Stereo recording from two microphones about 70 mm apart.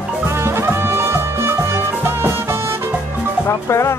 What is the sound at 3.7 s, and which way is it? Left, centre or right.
Music, left.